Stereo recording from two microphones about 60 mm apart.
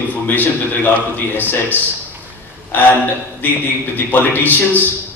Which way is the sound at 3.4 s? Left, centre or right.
Left.